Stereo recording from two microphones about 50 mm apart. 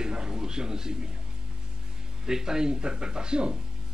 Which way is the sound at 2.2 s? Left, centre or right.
Centre.